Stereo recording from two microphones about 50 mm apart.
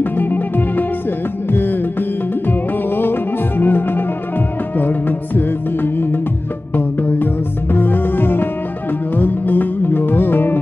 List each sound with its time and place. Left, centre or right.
0.0 s music: left